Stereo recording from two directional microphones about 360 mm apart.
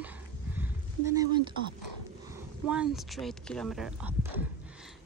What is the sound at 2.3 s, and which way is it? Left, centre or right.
Speech, centre.